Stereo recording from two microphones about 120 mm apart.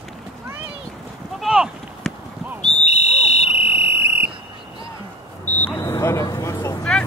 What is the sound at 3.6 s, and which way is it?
Fire alarm, 20° right (ahead or behind).